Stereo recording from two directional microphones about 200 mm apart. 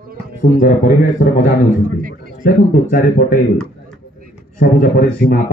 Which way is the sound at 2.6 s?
40° left (ahead or behind).